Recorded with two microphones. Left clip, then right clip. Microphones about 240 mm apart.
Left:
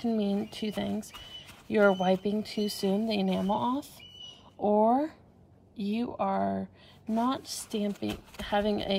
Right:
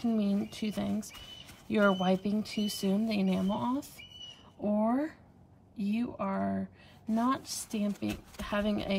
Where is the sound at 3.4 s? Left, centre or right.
Centre.